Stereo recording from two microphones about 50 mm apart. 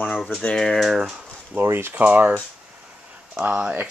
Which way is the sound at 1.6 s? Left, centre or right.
Right.